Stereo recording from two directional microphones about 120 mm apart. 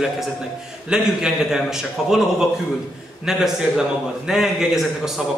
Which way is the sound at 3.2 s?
5° right (ahead or behind).